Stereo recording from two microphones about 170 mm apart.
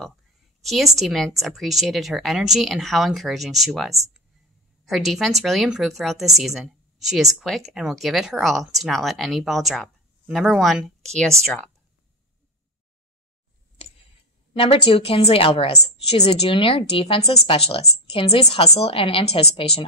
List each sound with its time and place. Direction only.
0.6 s a woman's voice: centre (ahead or behind)
14.6 s a woman's voice: 35° left (ahead or behind)